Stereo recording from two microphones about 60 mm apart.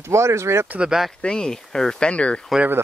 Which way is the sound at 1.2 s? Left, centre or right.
Centre.